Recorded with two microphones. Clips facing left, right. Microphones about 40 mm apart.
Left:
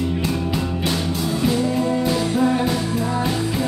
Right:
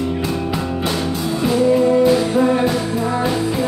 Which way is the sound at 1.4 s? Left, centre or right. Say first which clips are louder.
Right 7 dB; centre.